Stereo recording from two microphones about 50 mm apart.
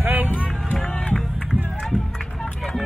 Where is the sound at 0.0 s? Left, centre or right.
Right.